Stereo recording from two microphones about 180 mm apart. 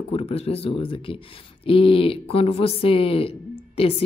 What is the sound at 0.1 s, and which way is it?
Speech, 35° left (ahead or behind).